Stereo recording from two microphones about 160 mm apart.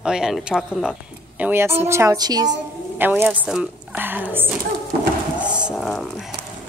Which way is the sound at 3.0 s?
10° right (ahead or behind).